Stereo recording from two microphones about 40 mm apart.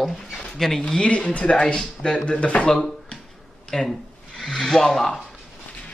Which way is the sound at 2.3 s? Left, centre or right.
Left.